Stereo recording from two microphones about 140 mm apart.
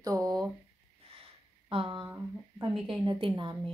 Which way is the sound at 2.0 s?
15° right (ahead or behind).